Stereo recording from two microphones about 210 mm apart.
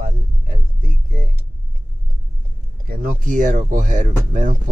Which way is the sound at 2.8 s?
40° right (ahead or behind).